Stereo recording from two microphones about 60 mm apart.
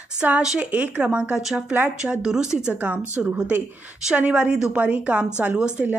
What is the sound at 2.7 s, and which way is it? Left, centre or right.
A woman's voice, right.